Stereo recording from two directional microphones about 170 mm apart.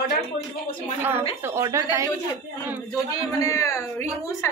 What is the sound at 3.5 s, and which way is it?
Speech, 15° left (ahead or behind).